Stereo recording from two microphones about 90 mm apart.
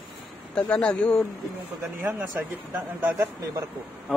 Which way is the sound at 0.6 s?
10° left (ahead or behind).